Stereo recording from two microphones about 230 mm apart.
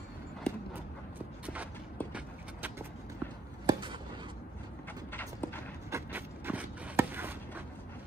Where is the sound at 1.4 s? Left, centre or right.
Centre.